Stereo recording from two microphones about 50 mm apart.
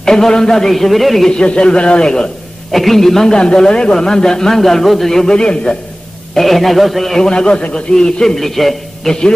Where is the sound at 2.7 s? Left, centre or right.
Centre.